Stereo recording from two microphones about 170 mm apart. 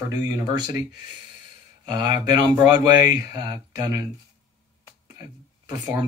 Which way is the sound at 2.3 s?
25° right (ahead or behind).